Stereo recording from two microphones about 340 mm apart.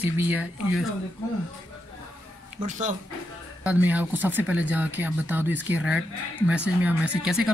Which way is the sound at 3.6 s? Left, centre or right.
Centre.